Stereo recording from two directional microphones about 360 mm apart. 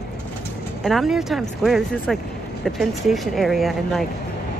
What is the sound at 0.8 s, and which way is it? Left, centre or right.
Speech, centre.